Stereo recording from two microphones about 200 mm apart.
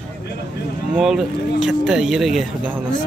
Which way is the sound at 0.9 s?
Centre (ahead or behind).